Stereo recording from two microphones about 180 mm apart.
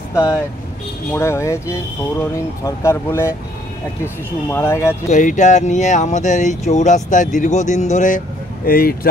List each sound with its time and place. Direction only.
0.1 s speech: 15° left (ahead or behind)
5.1 s speech: 45° left (ahead or behind)
8.6 s speech: 55° left (ahead or behind)